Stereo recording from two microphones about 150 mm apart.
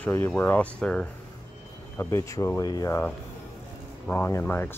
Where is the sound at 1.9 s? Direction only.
20° left (ahead or behind).